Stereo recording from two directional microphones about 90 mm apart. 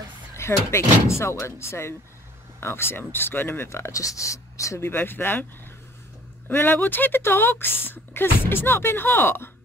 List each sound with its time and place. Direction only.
0.4 s speech: 30° left (ahead or behind)
6.5 s speech: 25° left (ahead or behind)